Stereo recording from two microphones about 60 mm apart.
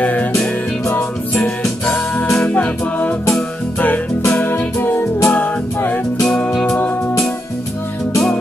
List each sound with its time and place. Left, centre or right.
0.0 s music: left
1.4 s music: centre
2.4 s music: left